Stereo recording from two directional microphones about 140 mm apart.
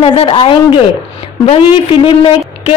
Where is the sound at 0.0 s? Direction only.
40° left (ahead or behind).